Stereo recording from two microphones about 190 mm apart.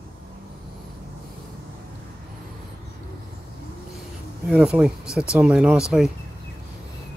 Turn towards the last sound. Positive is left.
turn(degrees=0)  # may be behind; listen again after turning